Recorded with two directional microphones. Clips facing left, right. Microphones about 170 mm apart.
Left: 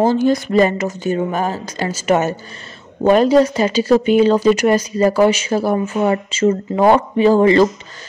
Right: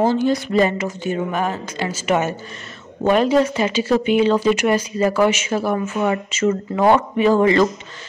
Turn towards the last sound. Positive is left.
turn(degrees=30)  # may be behind; listen again after turning